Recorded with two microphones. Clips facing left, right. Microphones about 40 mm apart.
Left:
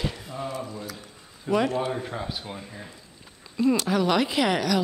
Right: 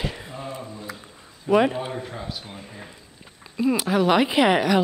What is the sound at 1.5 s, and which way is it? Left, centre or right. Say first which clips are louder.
Speech: right 4 dB; right.